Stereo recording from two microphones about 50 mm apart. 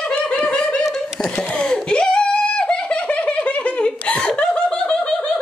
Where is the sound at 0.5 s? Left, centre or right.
Centre.